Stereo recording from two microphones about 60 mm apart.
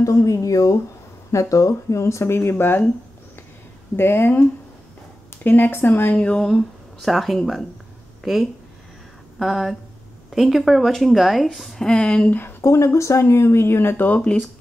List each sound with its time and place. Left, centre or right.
0.0 s speech: left
3.9 s speech: left
6.1 s speech: left
6.4 s a woman's voice: centre
11.8 s speech: centre
12.3 s speech: left
12.6 s speech: left